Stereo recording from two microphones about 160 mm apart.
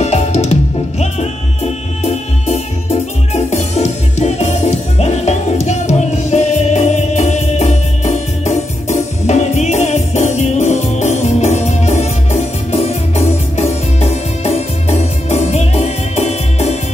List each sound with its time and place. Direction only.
0.0 s music: 45° left (ahead or behind)
2.0 s music: 40° left (ahead or behind)